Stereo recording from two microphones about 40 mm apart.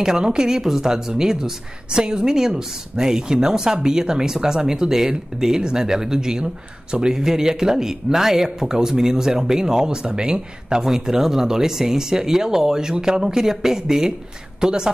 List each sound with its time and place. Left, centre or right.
0.0 s speech: centre